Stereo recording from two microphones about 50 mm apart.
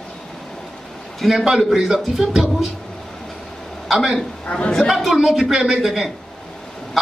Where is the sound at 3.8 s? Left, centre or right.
Centre.